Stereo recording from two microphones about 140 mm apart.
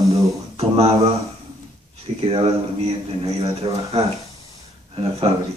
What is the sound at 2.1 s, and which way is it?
A man's voice, 40° right (ahead or behind).